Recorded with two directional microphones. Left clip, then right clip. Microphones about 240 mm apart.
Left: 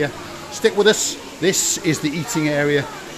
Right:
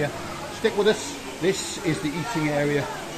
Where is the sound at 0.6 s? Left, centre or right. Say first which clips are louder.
Left 6 dB; left.